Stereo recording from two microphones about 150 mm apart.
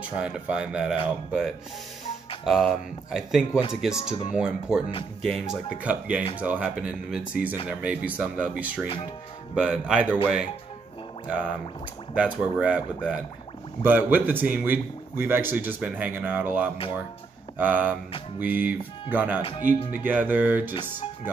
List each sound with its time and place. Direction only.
0.0 s speech: 5° right (ahead or behind)
2.4 s speech: centre (ahead or behind)
12.4 s speech: 10° right (ahead or behind)
19.4 s speech: 35° left (ahead or behind)
20.0 s speech: 10° right (ahead or behind)